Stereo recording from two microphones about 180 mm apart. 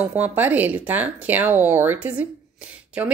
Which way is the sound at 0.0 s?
10° right (ahead or behind).